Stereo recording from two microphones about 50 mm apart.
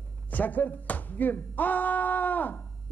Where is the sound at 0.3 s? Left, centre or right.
Left.